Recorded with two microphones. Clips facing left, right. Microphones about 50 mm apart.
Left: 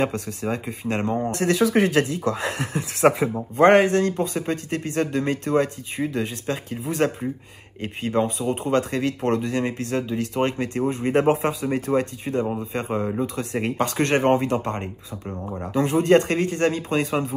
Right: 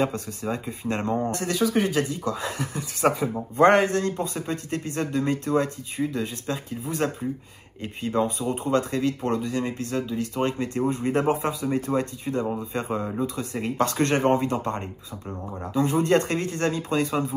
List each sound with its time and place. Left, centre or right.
0.0 s speech: left
1.6 s speech: left
8.1 s speech: left
13.4 s speech: left
13.7 s speech: left
15.2 s speech: centre
15.7 s speech: left